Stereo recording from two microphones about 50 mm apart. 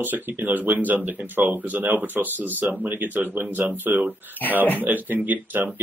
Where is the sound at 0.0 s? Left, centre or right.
Right.